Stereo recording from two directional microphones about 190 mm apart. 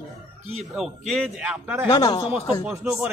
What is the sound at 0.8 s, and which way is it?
Speech, centre (ahead or behind).